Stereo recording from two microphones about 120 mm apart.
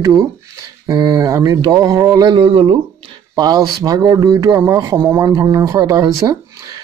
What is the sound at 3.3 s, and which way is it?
Speech, 35° right (ahead or behind).